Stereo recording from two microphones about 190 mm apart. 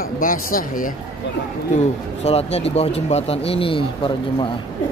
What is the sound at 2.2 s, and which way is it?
Speech, 35° left (ahead or behind).